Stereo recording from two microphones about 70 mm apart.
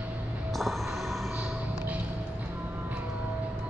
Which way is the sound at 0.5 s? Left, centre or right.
Centre.